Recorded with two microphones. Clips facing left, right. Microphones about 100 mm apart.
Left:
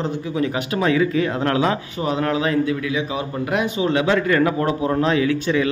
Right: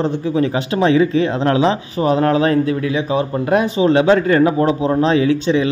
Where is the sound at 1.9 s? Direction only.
35° right (ahead or behind).